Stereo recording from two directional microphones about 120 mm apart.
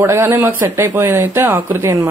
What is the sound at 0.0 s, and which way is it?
A woman's voice, 20° right (ahead or behind).